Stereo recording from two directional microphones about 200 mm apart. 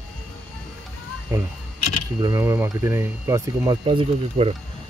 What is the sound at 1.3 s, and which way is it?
Speech, 10° right (ahead or behind).